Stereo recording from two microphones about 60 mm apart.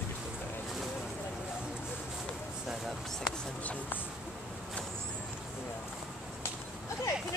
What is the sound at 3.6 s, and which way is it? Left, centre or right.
Speech, left.